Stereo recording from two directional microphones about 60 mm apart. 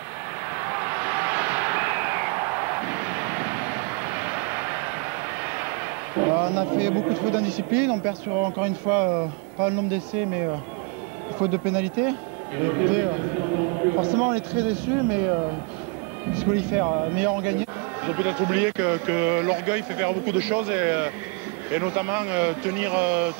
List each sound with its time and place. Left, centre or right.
0.6 s a sound: right
5.4 s vehicle: right
6.1 s a man's voice: right
14.0 s a man's voice: right
16.8 s speech: right
17.1 s a man's voice: right